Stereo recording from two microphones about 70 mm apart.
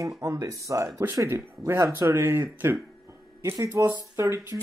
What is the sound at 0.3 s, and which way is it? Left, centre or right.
Speech, right.